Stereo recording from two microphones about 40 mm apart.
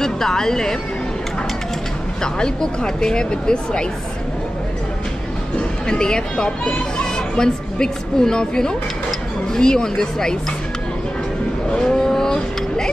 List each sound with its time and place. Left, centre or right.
0.0 s speech: centre
2.2 s speech: centre
5.9 s a woman's voice: centre
11.7 s cattle: centre